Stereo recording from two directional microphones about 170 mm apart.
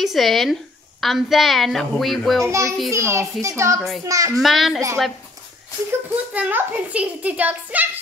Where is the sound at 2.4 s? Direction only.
20° right (ahead or behind).